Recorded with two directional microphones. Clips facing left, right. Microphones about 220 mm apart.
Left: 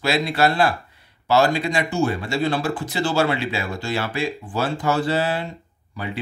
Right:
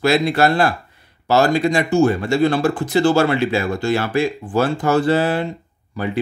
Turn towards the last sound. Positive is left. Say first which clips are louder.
# right 7 dB
turn(degrees=-50)  # may be behind; listen again after turning